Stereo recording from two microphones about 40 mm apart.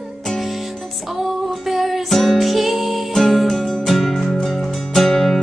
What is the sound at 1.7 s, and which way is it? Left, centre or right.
Music, centre.